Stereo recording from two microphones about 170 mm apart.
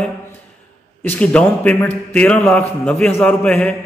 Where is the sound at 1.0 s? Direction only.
10° left (ahead or behind).